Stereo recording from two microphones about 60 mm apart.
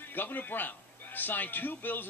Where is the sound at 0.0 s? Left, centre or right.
Left.